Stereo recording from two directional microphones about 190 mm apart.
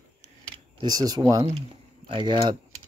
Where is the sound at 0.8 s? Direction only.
20° right (ahead or behind).